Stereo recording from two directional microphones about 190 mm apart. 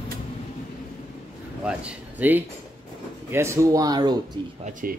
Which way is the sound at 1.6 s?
5° right (ahead or behind).